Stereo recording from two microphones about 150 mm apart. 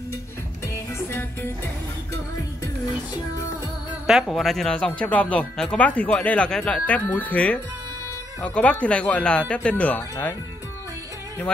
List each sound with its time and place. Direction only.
0.9 s music: 15° left (ahead or behind)
4.1 s speech: centre (ahead or behind)